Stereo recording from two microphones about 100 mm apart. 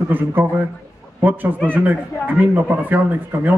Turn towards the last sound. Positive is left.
turn(degrees=-20)  # may be behind; listen again after turning